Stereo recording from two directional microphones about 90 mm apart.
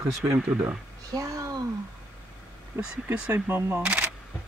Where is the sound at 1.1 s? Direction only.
40° right (ahead or behind).